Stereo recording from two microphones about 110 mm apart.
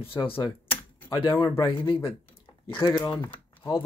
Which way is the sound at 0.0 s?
55° left (ahead or behind).